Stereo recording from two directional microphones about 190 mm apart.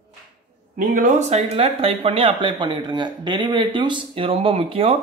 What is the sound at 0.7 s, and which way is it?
Speech, 45° right (ahead or behind).